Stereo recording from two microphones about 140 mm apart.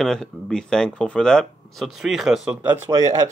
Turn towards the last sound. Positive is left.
turn(degrees=-20)  # may be behind; listen again after turning